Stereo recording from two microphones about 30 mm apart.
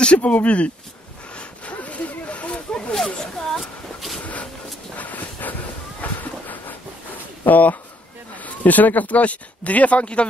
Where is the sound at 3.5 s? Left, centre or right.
Centre.